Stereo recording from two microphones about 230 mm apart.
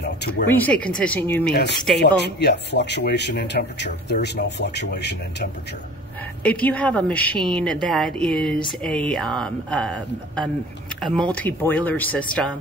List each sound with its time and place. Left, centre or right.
0.5 s a woman's voice: centre
1.5 s speech: left
6.4 s a woman's voice: centre